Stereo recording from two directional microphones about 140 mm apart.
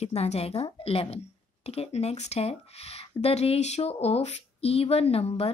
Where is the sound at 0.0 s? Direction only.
50° left (ahead or behind).